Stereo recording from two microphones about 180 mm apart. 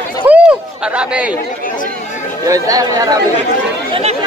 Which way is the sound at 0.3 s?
5° right (ahead or behind).